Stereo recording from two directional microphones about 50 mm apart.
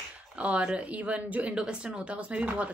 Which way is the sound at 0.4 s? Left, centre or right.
Right.